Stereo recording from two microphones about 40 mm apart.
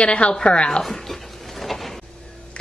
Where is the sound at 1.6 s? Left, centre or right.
Centre.